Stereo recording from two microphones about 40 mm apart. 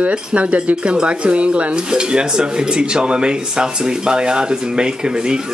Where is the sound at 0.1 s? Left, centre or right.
Right.